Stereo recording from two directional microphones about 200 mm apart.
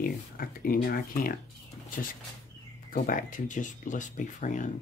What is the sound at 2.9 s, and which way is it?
Speech, 45° left (ahead or behind).